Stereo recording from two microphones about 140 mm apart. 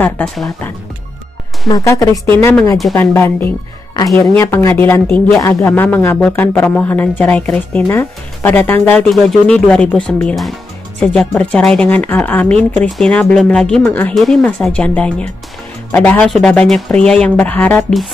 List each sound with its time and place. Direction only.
0.2 s speech: 5° left (ahead or behind)
1.7 s speech: 25° left (ahead or behind)
9.1 s speech: centre (ahead or behind)